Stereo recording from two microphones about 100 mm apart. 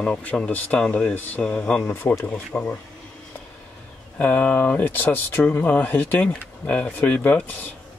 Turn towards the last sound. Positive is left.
turn(degrees=15)  # may be behind; listen again after turning